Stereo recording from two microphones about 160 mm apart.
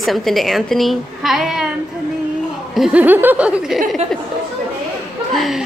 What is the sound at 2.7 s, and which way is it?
Speech, 5° right (ahead or behind).